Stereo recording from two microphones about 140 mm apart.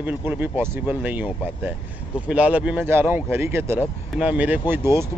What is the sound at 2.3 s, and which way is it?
Speech, 10° right (ahead or behind).